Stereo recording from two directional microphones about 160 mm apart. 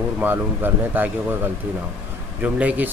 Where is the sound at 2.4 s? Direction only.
10° right (ahead or behind).